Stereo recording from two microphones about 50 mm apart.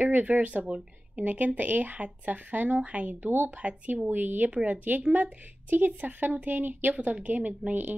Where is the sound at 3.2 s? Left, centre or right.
Right.